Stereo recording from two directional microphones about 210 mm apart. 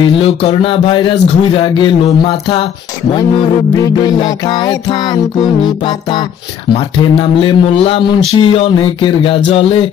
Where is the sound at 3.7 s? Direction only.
20° left (ahead or behind).